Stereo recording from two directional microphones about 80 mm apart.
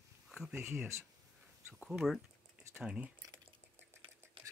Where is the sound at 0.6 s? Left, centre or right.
Right.